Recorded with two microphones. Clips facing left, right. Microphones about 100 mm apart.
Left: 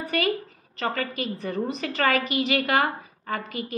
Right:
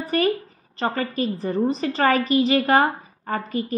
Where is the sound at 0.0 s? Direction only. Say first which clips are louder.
Right 5 dB; 35° right (ahead or behind).